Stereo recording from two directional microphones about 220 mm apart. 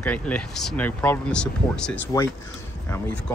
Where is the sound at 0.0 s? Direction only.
5° left (ahead or behind).